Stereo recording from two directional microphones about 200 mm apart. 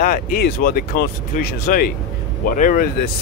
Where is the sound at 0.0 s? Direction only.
45° left (ahead or behind).